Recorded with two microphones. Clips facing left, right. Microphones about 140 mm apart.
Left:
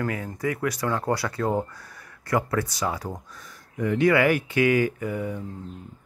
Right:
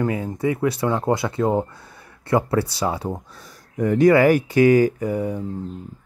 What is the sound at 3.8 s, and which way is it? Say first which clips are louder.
Speech: right 6 dB; 40° right (ahead or behind).